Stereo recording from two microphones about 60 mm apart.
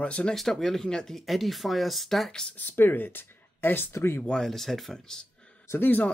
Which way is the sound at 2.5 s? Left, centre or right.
Left.